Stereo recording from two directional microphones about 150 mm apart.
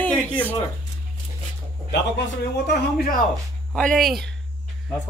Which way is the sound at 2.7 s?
80° left.